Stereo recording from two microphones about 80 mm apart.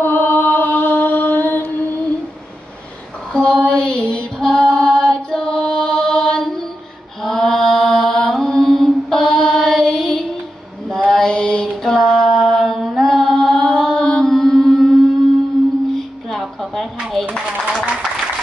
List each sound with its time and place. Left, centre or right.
0.0 s chant: left
3.3 s female singing: centre
7.2 s mantra: centre
16.3 s a sound: centre